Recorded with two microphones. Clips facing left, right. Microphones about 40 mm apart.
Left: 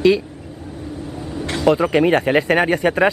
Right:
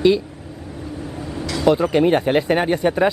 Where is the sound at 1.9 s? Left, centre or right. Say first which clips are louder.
Left 1 dB; left.